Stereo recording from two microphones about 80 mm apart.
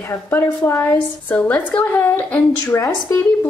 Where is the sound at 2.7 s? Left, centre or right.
Left.